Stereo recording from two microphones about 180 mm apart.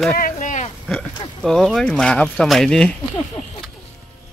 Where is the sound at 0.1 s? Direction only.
50° left (ahead or behind).